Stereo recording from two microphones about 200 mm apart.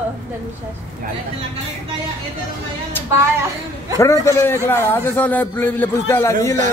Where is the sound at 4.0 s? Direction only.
15° left (ahead or behind).